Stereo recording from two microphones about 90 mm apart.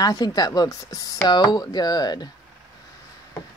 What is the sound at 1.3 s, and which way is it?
Speech, 50° left (ahead or behind).